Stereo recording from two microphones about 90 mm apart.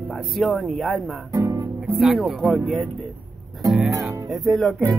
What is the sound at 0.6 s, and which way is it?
Speech, centre (ahead or behind).